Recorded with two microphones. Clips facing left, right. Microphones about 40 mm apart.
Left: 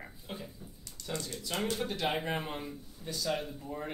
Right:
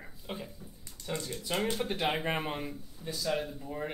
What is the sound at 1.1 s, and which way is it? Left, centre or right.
Speech, centre.